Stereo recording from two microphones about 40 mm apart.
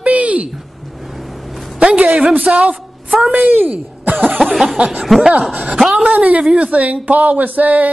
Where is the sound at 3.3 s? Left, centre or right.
Right.